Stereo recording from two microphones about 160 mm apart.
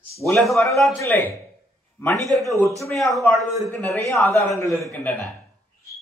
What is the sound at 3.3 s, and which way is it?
Speech, 20° right (ahead or behind).